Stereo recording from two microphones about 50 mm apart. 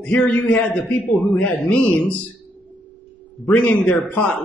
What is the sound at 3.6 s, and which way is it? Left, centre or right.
Speech, left.